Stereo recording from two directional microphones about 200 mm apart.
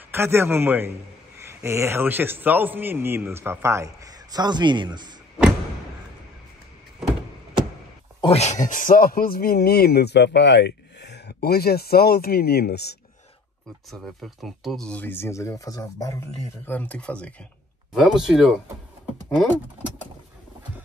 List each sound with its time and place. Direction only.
0.1 s a man's voice: 10° right (ahead or behind)
8.2 s speech: 30° left (ahead or behind); by 12.9 s 55° left (ahead or behind)
13.8 s speech: centre (ahead or behind)